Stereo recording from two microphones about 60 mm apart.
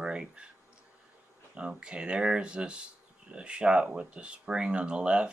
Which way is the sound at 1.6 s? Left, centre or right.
Centre.